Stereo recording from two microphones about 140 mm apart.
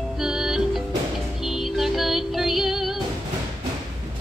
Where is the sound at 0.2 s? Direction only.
5° right (ahead or behind).